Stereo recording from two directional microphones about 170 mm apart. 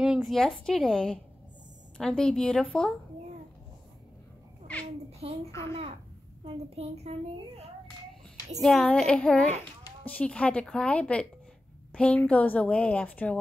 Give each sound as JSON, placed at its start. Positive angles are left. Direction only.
{"t": 0.0, "sound": "a woman's voice", "side_deg": 0}
{"t": 5.5, "sound": "a woman's voice", "side_deg": 15}
{"t": 6.4, "sound": "a woman's voice", "side_deg": -35}
{"t": 8.5, "sound": "a woman's voice", "side_deg": 0}